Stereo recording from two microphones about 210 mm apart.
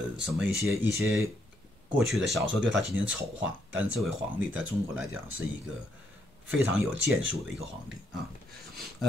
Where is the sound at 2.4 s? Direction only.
60° right (ahead or behind).